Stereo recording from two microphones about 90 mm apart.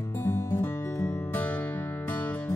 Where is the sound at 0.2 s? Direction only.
30° left (ahead or behind).